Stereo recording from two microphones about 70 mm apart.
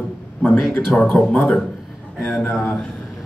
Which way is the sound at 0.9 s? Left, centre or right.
Centre.